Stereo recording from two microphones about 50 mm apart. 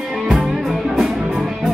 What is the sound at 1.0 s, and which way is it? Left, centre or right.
Music, right.